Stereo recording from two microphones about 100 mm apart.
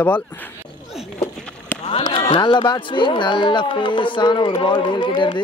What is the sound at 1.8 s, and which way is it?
Speech, 75° left (ahead or behind).